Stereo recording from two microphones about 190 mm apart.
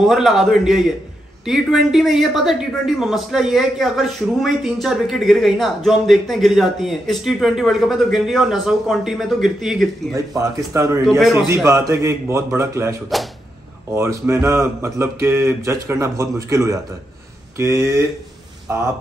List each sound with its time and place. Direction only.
0.0 s a man's voice: centre (ahead or behind)
10.1 s speech: 15° right (ahead or behind)
11.1 s a man's voice: centre (ahead or behind)
11.5 s speech: 15° right (ahead or behind)
13.9 s speech: 15° right (ahead or behind)